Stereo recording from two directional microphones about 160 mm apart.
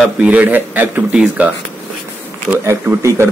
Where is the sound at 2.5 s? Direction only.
15° right (ahead or behind).